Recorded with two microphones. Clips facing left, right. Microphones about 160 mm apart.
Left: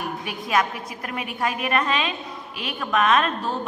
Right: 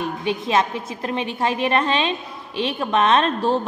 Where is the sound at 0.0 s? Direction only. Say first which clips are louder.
Right 6 dB; 25° right (ahead or behind).